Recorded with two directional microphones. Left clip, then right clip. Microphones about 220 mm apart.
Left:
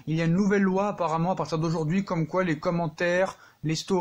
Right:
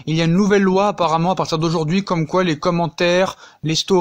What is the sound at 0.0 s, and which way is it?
A man's voice, 35° right (ahead or behind).